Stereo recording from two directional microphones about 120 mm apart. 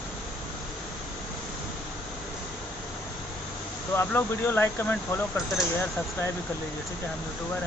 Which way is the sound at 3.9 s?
20° left (ahead or behind).